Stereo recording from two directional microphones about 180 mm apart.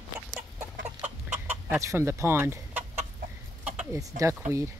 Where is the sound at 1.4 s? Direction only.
15° right (ahead or behind).